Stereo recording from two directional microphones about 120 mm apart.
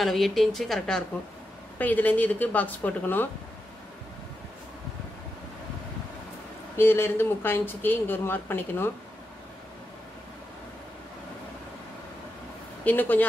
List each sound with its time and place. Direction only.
0.0 s a woman's voice: centre (ahead or behind)
1.8 s speech: 15° left (ahead or behind)
6.8 s speech: 20° left (ahead or behind)
12.8 s speech: 15° left (ahead or behind)